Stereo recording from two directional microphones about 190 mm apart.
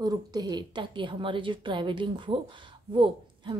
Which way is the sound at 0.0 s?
20° right (ahead or behind).